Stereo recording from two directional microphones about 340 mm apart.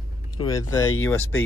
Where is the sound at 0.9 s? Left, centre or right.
Left.